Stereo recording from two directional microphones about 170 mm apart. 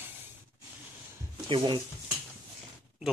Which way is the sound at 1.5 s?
30° right (ahead or behind).